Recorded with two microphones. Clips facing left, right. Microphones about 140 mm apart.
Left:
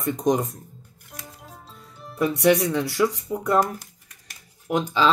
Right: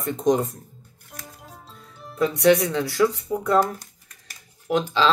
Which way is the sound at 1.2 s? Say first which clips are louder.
Even; centre (ahead or behind).